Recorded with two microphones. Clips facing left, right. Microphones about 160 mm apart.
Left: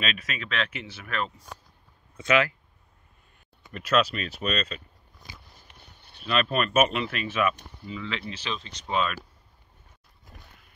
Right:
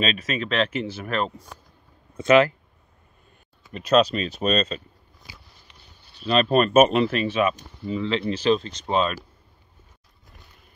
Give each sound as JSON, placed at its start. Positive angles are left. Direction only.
{"t": 0.0, "sound": "speech", "side_deg": -35}
{"t": 4.0, "sound": "speech", "side_deg": -25}
{"t": 5.7, "sound": "a sound", "side_deg": 55}
{"t": 6.2, "sound": "speech", "side_deg": -35}